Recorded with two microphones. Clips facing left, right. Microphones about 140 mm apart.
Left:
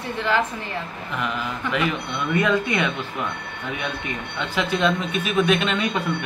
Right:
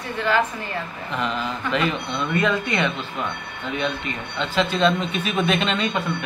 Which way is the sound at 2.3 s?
10° left (ahead or behind).